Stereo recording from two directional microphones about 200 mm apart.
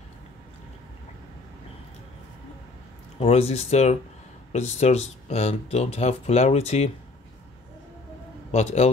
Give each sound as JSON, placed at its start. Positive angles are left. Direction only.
{"t": 3.2, "sound": "speech", "side_deg": 30}
{"t": 8.5, "sound": "a man's voice", "side_deg": 35}